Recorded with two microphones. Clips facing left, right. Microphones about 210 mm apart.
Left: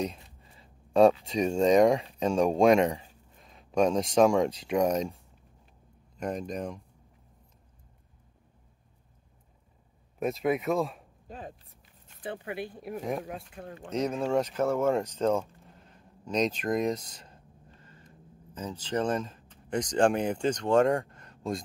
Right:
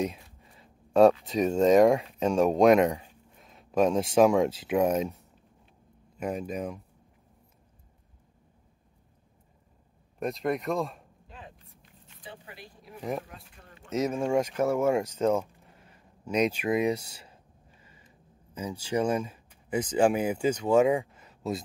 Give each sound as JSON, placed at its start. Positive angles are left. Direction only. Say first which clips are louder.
{"t": 0.0, "sound": "speech", "louder": "right 2 dB", "side_deg": -5}
{"t": 6.1, "sound": "speech", "louder": "right 1 dB", "side_deg": -5}
{"t": 10.1, "sound": "speech", "louder": "left 2 dB", "side_deg": 0}
{"t": 11.2, "sound": "a sound", "louder": "left 7 dB", "side_deg": 45}
{"t": 12.2, "sound": "speech", "louder": "left 11 dB", "side_deg": 60}
{"t": 13.9, "sound": "speech", "louder": "right 1 dB", "side_deg": -10}